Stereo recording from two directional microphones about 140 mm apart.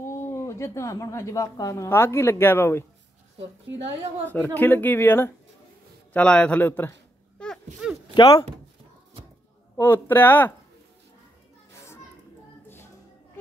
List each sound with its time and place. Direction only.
0.0 s a woman's voice: 20° left (ahead or behind)
4.6 s a man's voice: 15° left (ahead or behind)
8.1 s speech: 45° left (ahead or behind)
9.8 s speech: 15° left (ahead or behind)